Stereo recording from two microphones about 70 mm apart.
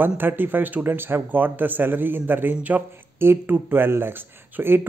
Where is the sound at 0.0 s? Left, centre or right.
Right.